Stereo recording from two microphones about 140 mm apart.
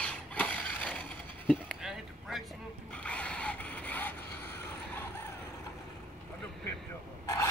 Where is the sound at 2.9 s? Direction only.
10° left (ahead or behind).